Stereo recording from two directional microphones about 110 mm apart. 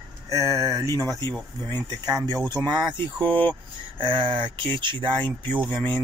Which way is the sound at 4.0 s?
45° right (ahead or behind).